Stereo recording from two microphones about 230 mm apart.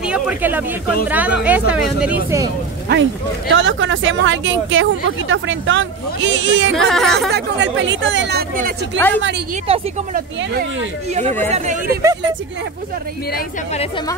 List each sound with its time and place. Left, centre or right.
0.0 s speech: centre
2.9 s speech: right
6.8 s speech: centre
7.3 s speech: right
9.7 s speech: right
11.1 s speech: right